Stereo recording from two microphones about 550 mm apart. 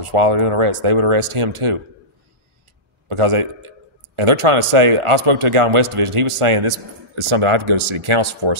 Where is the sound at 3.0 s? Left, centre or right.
Right.